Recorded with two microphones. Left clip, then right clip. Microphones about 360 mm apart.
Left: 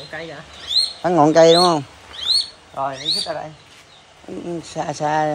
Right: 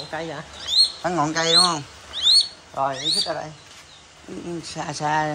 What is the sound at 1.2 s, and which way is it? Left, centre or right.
Speech, centre.